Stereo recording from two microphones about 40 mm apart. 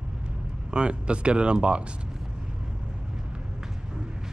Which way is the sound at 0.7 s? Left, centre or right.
Right.